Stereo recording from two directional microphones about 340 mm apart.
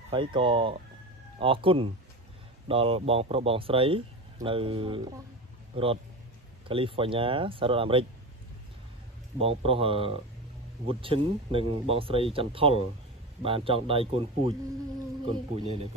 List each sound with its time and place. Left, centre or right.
0.1 s speech: centre
6.7 s speech: centre
9.4 s speech: centre